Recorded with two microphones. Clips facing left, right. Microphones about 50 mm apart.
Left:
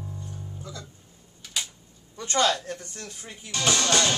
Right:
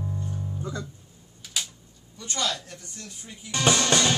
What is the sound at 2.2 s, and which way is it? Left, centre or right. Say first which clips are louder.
Speech: left 6 dB; left.